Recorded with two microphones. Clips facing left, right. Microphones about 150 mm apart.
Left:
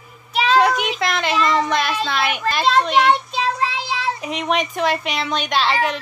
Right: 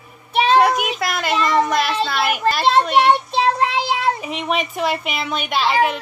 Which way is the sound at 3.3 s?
60° right (ahead or behind).